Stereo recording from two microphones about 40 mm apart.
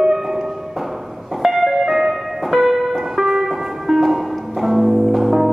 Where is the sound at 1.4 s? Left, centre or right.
Centre.